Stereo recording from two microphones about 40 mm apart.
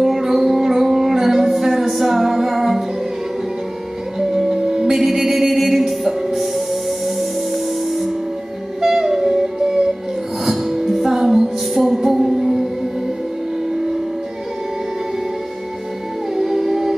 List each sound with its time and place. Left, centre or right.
0.0 s music: centre
4.3 s music: centre
16.3 s music: centre